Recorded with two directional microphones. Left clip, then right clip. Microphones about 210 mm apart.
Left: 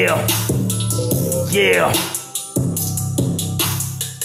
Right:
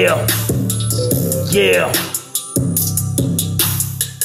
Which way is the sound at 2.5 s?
35° right (ahead or behind).